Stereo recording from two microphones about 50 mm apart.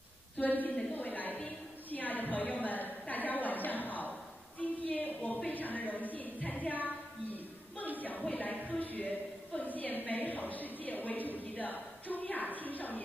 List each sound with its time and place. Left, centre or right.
0.4 s a woman's voice: left
0.9 s a sound: left
2.3 s a woman's voice: left
4.6 s a sound: left
5.5 s a woman's voice: left
8.0 s a woman's voice: left